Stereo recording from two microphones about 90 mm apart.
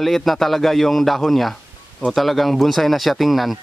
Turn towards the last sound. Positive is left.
turn(degrees=0)  # may be behind; listen again after turning